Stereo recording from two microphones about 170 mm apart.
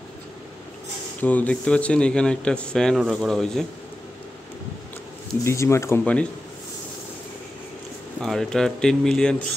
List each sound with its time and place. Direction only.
1.2 s speech: 10° left (ahead or behind)
5.4 s speech: 15° left (ahead or behind)
8.2 s speech: centre (ahead or behind)